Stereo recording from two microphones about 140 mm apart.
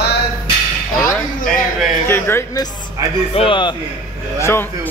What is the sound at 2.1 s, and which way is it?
Speech, 15° left (ahead or behind).